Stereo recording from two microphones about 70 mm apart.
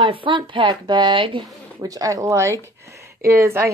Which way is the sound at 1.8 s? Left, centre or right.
Right.